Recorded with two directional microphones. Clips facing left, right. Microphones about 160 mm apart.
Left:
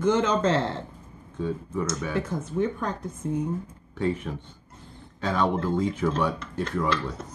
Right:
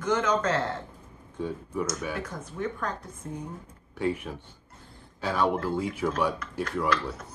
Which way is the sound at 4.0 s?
10° right (ahead or behind).